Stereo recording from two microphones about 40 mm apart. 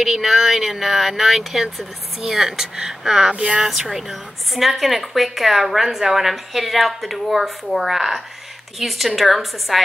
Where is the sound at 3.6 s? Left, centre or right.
Centre.